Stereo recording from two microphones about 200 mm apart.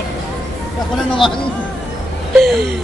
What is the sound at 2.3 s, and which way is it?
Gasp, centre (ahead or behind).